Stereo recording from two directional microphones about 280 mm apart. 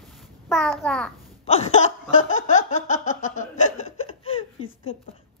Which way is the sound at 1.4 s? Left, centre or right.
Left.